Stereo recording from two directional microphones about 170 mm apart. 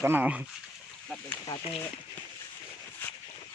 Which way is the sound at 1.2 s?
20° left (ahead or behind).